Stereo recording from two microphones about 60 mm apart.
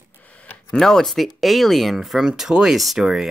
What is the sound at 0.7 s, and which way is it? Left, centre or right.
Speech, centre.